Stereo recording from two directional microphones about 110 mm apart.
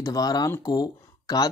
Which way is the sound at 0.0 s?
35° left (ahead or behind).